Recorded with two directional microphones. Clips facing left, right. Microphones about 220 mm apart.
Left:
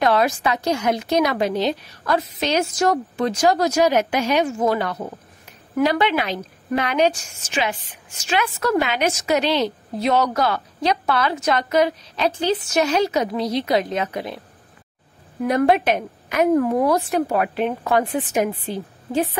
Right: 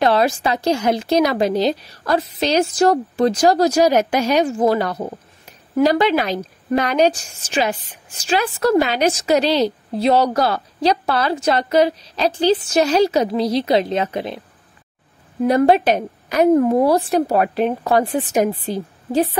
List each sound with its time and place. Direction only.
0.0 s a woman's voice: 30° right (ahead or behind)
15.4 s a woman's voice: 35° right (ahead or behind)